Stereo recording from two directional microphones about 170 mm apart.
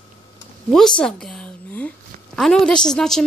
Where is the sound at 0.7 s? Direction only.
5° left (ahead or behind).